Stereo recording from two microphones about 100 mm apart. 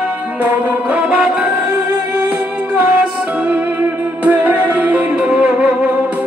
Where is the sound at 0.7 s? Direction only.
10° right (ahead or behind).